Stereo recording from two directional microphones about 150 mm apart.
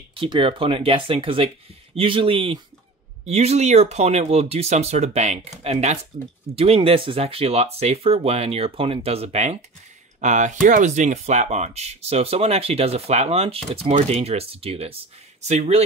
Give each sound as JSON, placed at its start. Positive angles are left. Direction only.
{"t": 0.1, "sound": "speech", "side_deg": -35}